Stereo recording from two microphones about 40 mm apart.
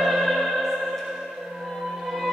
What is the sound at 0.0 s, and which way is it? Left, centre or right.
Music, centre.